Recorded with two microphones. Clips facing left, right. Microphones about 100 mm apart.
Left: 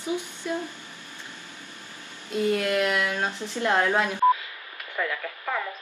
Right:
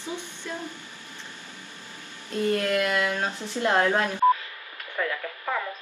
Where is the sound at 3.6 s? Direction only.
15° right (ahead or behind).